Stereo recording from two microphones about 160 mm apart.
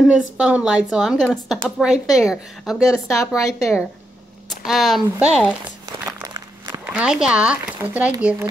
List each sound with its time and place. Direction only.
0.4 s speech: 5° right (ahead or behind)
2.9 s speech: 20° left (ahead or behind)
4.5 s speech: centre (ahead or behind)
6.0 s walk: 25° right (ahead or behind)
6.8 s speech: 5° right (ahead or behind)